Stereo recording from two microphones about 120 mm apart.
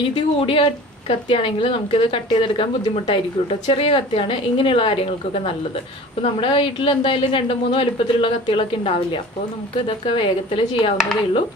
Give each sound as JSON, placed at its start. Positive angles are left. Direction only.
{"t": 0.1, "sound": "a woman's voice", "side_deg": 45}